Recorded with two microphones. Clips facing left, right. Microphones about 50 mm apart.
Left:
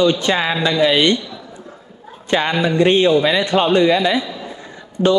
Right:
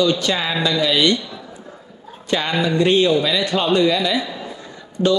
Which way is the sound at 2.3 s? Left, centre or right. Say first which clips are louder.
Left 3 dB; left.